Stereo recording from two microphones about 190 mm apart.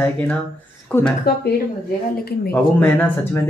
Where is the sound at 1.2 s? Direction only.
60° left (ahead or behind).